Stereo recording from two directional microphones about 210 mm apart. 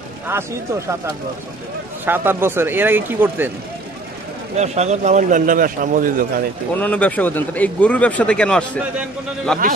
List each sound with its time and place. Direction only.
0.3 s speech: 15° right (ahead or behind)
2.0 s speech: 10° right (ahead or behind)
4.6 s a man's voice: 30° right (ahead or behind)
6.7 s a man's voice: 10° left (ahead or behind)